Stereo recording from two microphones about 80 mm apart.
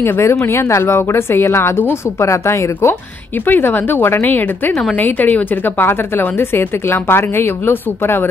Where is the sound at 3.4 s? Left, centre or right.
Left.